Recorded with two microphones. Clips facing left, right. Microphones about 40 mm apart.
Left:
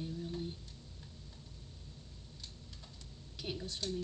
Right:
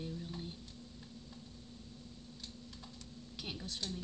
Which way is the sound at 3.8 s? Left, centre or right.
Right.